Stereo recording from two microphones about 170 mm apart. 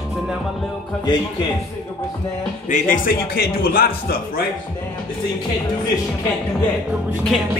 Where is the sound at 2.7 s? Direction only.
55° left (ahead or behind).